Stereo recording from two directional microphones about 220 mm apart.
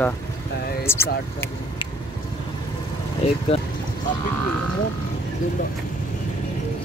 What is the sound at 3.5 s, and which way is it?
Speech, 25° left (ahead or behind).